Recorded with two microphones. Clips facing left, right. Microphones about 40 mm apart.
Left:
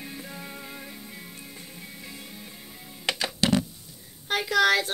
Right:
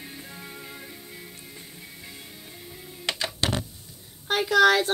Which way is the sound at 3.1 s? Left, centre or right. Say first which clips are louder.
Left 3 dB; right.